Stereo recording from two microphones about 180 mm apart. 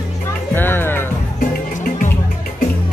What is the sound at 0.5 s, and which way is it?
Speech, 10° left (ahead or behind).